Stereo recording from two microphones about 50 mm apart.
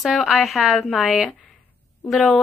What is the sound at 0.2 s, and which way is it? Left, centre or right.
A woman's voice, centre.